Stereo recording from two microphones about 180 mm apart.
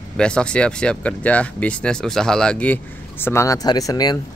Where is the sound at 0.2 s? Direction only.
5° left (ahead or behind).